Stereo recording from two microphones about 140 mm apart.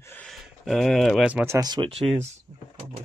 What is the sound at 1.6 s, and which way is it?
Speech, 30° right (ahead or behind).